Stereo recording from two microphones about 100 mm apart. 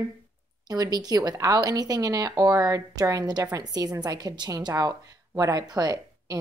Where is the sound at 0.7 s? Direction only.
40° right (ahead or behind).